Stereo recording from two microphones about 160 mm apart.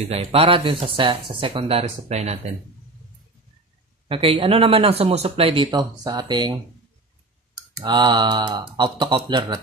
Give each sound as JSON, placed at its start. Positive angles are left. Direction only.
{"t": 0.1, "sound": "speech", "side_deg": -40}
{"t": 4.1, "sound": "speech", "side_deg": -35}
{"t": 7.8, "sound": "speech", "side_deg": -30}